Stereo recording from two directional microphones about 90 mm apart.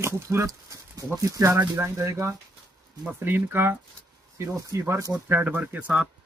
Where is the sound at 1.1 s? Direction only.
35° right (ahead or behind).